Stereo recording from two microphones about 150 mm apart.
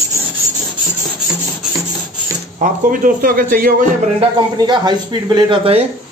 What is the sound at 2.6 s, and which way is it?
Speech, 55° right (ahead or behind).